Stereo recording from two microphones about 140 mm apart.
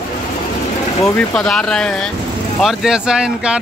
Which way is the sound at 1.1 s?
5° left (ahead or behind).